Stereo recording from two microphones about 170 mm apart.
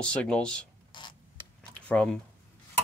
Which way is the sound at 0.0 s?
5° left (ahead or behind).